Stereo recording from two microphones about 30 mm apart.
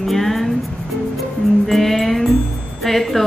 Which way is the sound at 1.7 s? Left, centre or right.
Centre.